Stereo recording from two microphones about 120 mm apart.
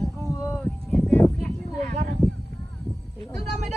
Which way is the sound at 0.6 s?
10° left (ahead or behind).